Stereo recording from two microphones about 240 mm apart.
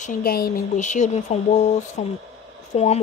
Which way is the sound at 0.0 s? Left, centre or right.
Left.